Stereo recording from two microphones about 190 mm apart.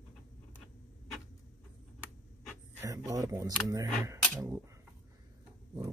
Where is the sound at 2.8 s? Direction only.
15° right (ahead or behind).